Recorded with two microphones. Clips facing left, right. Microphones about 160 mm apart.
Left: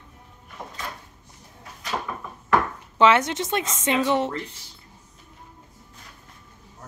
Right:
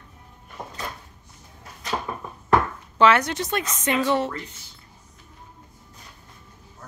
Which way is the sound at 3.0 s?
20° left (ahead or behind).